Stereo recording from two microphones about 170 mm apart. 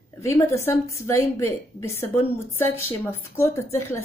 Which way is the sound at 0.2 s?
15° left (ahead or behind).